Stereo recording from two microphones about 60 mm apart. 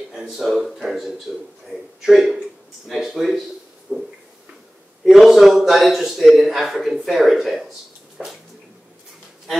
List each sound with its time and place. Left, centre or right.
0.3 s speech: centre
3.9 s a sound: centre
5.0 s a man's voice: centre
8.2 s bathtub: centre